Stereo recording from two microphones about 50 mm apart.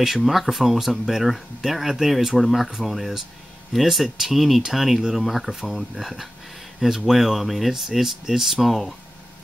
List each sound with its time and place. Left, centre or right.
0.0 s speech: centre